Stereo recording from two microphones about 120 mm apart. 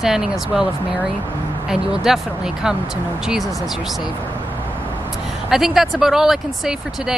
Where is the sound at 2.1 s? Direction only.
5° right (ahead or behind).